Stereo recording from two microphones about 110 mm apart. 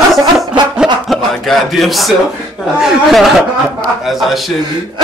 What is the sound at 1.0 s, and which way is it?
Speech, centre (ahead or behind).